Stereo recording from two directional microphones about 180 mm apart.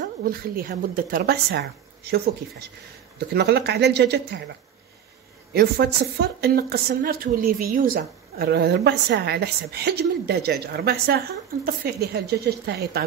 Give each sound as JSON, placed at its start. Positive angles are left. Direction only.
{"t": 0.0, "sound": "a woman's voice", "side_deg": -55}
{"t": 5.5, "sound": "a woman's voice", "side_deg": -65}